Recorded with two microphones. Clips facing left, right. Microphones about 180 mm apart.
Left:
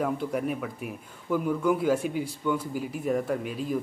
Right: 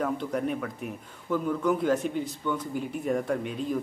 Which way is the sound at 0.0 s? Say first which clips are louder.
Left 1 dB; 5° left (ahead or behind).